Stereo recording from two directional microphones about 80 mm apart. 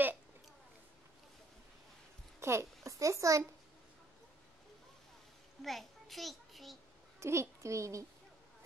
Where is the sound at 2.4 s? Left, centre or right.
Right.